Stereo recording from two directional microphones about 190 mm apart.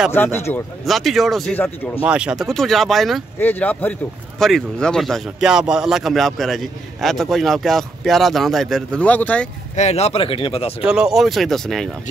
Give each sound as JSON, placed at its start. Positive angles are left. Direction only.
{"t": 0.1, "sound": "speech", "side_deg": 10}
{"t": 0.8, "sound": "a man's voice", "side_deg": 0}
{"t": 2.0, "sound": "a man's voice", "side_deg": -5}
{"t": 9.8, "sound": "speech", "side_deg": 35}
{"t": 10.9, "sound": "a man's voice", "side_deg": -5}